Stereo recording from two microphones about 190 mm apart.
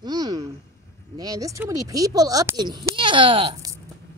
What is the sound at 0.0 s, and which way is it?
A woman's voice, 20° right (ahead or behind).